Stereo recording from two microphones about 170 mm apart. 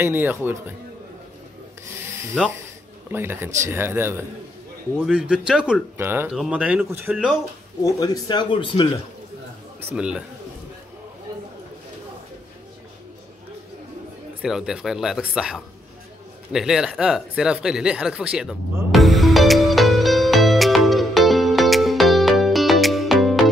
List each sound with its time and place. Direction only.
0.0 s speech: 10° right (ahead or behind)
1.9 s rub: 15° right (ahead or behind)
3.1 s speech: 10° right (ahead or behind)
7.8 s speech: 20° left (ahead or behind)
9.9 s speech: 5° right (ahead or behind)
14.4 s speech: 5° right (ahead or behind)
16.5 s a sound: 5° right (ahead or behind)